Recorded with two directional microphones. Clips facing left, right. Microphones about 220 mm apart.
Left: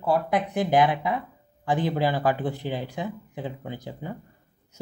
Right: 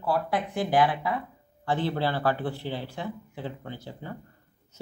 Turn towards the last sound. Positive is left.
turn(degrees=15)  # may be behind; listen again after turning